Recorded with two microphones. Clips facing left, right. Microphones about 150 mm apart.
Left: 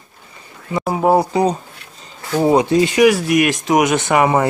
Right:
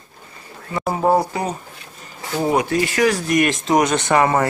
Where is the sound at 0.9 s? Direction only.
5° left (ahead or behind).